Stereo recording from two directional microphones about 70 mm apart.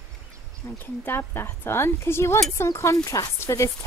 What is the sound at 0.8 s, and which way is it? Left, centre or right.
A woman's voice, left.